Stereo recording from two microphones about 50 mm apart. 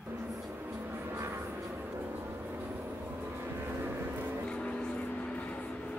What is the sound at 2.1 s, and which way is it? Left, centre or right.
Vehicle, right.